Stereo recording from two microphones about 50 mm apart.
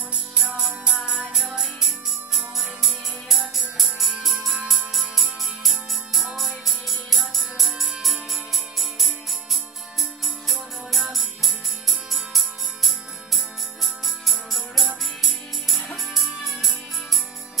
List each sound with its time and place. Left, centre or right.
0.4 s music: centre
1.0 s music: centre